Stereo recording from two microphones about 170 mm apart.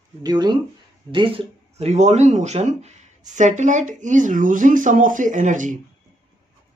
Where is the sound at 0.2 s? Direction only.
25° right (ahead or behind); by 5.8 s 50° right (ahead or behind).